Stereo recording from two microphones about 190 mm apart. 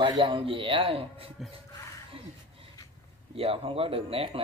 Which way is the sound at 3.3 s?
30° right (ahead or behind).